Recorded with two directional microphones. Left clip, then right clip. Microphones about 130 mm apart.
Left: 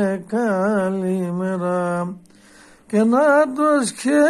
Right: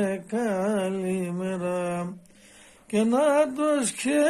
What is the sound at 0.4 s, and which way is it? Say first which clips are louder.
Mantra: left 7 dB; 15° right (ahead or behind).